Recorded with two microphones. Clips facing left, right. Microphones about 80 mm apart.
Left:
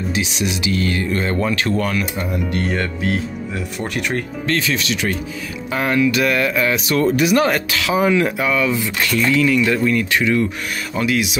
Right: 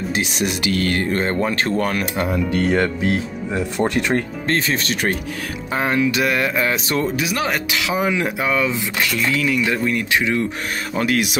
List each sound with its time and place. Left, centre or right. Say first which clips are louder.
0.1 s speech: right 1 dB; right
2.7 s speech: right 3 dB; right
5.7 s speech: left 2 dB; right
7.2 s speech: left 6 dB; centre; by 8.8 s right
9.1 s speech: left 6 dB; centre; by 10.4 s right
11.0 s speech: even; right